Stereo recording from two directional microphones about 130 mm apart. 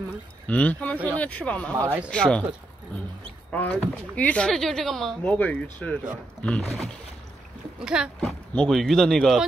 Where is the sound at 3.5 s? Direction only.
10° left (ahead or behind).